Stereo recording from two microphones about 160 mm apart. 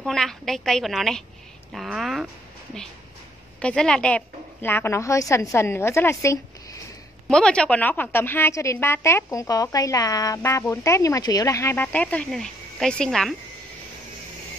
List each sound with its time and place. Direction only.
0.0 s a woman's voice: 5° left (ahead or behind)
3.5 s a woman's voice: 5° left (ahead or behind)
7.2 s a woman's voice: 5° left (ahead or behind)